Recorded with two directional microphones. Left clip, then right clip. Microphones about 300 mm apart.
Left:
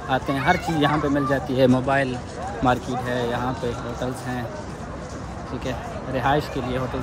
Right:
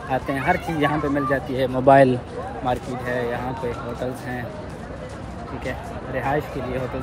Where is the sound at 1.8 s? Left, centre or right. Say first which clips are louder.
Right 8 dB; centre.